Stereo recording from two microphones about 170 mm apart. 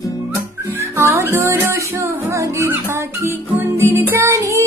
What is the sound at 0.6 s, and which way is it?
Music, 15° right (ahead or behind).